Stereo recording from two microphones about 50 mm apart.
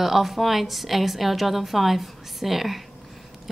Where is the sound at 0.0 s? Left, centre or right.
Centre.